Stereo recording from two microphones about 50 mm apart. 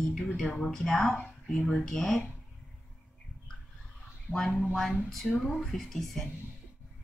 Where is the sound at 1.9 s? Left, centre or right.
Centre.